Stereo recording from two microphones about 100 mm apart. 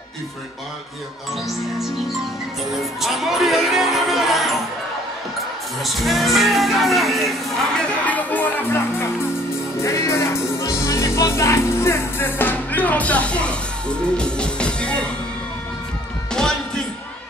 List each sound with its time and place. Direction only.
2.8 s music: centre (ahead or behind)
5.8 s music: centre (ahead or behind)
16.3 s music: 5° left (ahead or behind)